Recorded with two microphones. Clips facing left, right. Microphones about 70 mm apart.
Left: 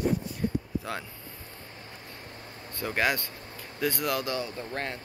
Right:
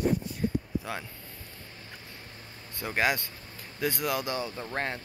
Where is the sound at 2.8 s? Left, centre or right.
Centre.